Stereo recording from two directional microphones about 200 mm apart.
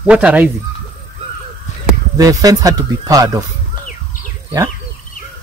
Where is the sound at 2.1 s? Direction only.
20° right (ahead or behind).